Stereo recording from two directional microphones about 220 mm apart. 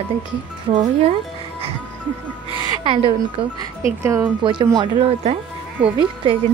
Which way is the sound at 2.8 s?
20° right (ahead or behind).